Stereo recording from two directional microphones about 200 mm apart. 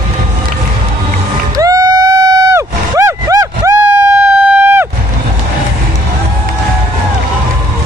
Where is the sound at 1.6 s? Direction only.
15° right (ahead or behind).